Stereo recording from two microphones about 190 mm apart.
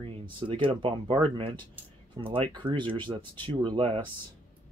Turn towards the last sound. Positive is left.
turn(degrees=-25)  # may be behind; listen again after turning